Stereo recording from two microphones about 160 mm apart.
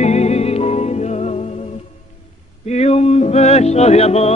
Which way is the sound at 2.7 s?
40° left (ahead or behind).